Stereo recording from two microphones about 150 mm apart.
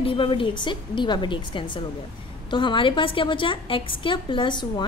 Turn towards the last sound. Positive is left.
turn(degrees=30)  # may be behind; listen again after turning